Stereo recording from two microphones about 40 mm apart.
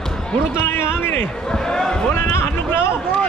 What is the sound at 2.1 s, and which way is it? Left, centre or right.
Music, left.